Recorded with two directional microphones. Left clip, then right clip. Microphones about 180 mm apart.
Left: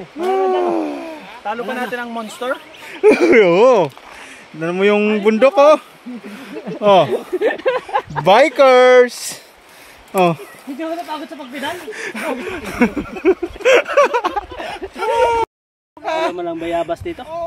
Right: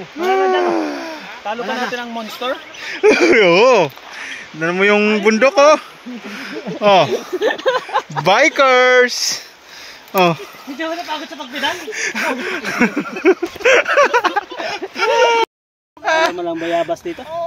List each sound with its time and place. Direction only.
0.2 s hoot: 10° right (ahead or behind)
0.7 s a sound: centre (ahead or behind)
1.8 s speech: 15° right (ahead or behind)
2.1 s speech: 5° right (ahead or behind)
2.8 s speech: 15° left (ahead or behind)
7.2 s a sound: 15° left (ahead or behind)
7.8 s speech: 5° left (ahead or behind)
11.1 s speech: 20° left (ahead or behind)
11.9 s speech: 35° left (ahead or behind)
12.4 s speech: centre (ahead or behind)
16.0 s a sound: 5° left (ahead or behind)
16.3 s speech: 50° right (ahead or behind)